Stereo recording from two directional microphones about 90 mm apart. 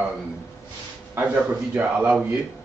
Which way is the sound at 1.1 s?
20° right (ahead or behind).